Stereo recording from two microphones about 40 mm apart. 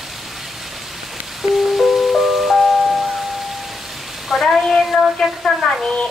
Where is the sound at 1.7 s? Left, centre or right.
Centre.